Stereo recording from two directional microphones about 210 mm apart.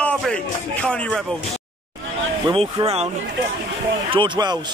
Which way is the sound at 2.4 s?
25° right (ahead or behind).